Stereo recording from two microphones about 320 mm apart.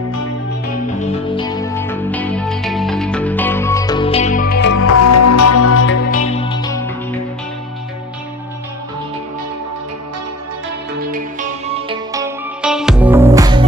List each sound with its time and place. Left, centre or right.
1.1 s music: centre; by 4.9 s left
4.9 s music: left
6.0 s music: left
11.1 s music: right